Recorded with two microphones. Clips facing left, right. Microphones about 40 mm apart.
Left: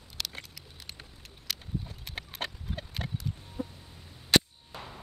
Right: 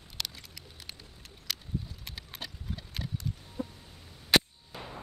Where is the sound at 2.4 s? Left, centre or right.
Left.